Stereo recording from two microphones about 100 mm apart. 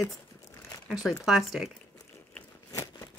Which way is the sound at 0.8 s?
5° right (ahead or behind).